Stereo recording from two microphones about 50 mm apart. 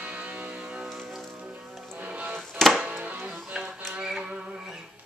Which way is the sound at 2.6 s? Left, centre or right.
Centre.